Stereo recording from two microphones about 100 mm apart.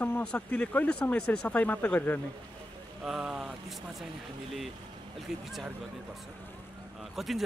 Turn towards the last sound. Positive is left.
turn(degrees=0)  # may be behind; listen again after turning